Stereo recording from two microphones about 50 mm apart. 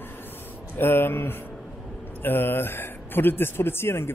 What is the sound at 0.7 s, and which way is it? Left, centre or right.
Speech, left.